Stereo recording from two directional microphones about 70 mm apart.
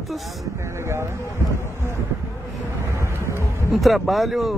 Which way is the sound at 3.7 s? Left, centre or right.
Centre.